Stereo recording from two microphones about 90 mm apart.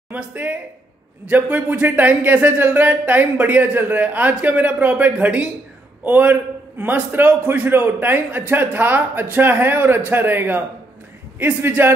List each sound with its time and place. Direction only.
0.1 s a man's voice: 20° right (ahead or behind)